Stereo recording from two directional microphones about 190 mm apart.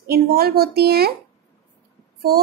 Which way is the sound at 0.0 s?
55° right (ahead or behind).